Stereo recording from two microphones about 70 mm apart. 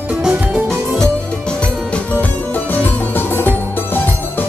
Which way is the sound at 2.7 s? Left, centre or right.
Left.